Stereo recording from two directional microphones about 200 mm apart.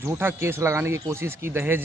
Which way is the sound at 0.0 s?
10° right (ahead or behind).